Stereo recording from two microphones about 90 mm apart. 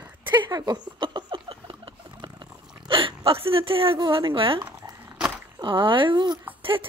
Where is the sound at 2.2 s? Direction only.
70° right (ahead or behind); by 4.0 s 90° right.